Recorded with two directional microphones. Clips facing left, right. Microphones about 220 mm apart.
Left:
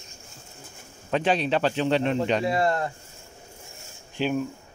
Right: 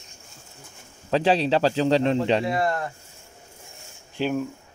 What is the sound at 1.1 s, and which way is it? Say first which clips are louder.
A man's voice: right 3 dB; 30° right (ahead or behind).